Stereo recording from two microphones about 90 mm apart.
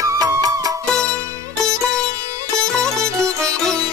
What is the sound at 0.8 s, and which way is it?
Music, 10° left (ahead or behind).